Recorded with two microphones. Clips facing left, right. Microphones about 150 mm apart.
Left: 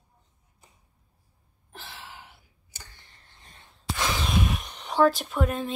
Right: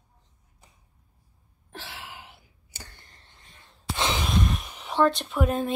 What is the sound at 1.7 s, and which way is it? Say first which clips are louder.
Gasp: right 3 dB; 80° right.